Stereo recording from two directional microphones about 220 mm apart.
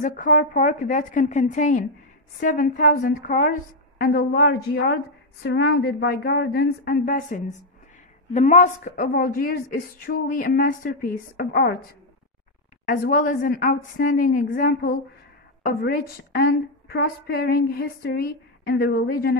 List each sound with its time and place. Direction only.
0.0 s a woman's voice: 35° left (ahead or behind)
12.8 s a woman's voice: 40° left (ahead or behind)